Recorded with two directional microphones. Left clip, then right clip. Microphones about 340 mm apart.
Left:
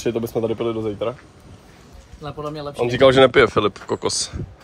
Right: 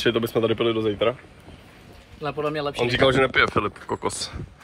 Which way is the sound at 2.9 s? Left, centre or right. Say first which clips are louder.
Left 7 dB; left.